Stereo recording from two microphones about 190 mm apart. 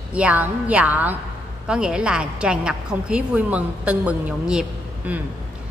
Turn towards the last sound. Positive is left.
turn(degrees=-5)  # may be behind; listen again after turning